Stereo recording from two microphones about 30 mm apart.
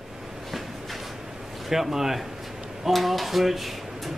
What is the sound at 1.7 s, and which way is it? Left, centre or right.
Speech, centre.